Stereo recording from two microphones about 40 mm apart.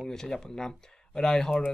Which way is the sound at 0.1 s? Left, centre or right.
Centre.